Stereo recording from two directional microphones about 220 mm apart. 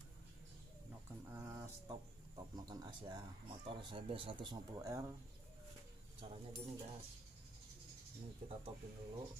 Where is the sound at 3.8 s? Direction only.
20° right (ahead or behind).